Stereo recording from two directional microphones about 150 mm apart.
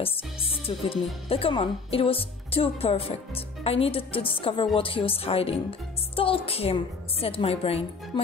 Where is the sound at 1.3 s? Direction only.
35° left (ahead or behind).